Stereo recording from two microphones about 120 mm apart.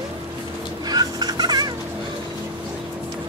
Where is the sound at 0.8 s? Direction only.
35° right (ahead or behind).